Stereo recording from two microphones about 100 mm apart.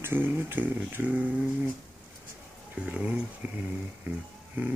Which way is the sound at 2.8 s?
15° right (ahead or behind).